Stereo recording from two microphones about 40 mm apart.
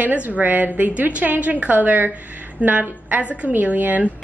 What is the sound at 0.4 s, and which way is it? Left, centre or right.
A woman's voice, right.